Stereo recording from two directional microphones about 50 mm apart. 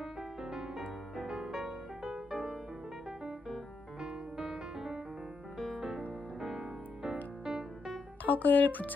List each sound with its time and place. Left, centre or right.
0.0 s music: centre
6.4 s music: centre
8.2 s speech: left